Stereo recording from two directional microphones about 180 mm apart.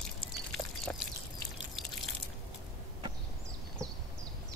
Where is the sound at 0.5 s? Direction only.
Centre (ahead or behind).